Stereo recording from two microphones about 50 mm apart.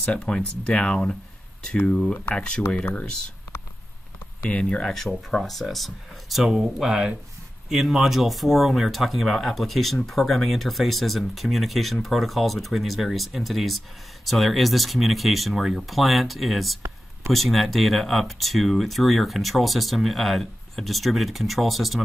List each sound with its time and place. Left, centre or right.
0.0 s speech: centre
2.3 s speech: centre
2.8 s speech: left
4.5 s speech: left
4.8 s speech: centre